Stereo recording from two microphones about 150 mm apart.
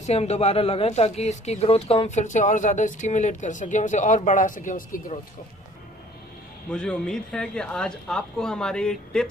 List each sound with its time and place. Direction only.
0.0 s speech: 45° left (ahead or behind); by 5.1 s 65° left (ahead or behind)
6.7 s speech: 5° left (ahead or behind)